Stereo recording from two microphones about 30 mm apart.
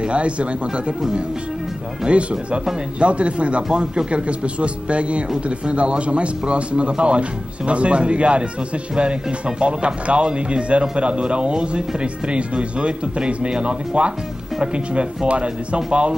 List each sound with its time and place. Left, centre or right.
0.1 s speech: right
2.1 s speech: right
9.6 s speech: right